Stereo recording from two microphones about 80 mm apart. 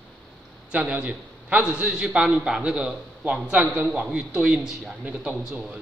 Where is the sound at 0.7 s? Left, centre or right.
Centre.